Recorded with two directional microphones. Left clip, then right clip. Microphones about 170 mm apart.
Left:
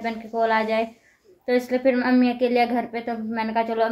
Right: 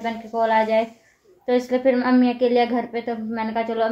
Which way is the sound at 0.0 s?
10° left (ahead or behind).